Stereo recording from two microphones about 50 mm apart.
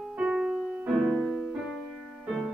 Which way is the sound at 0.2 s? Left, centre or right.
Right.